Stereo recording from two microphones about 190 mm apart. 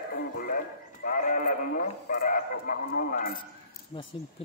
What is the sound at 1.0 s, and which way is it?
Speech, 45° left (ahead or behind).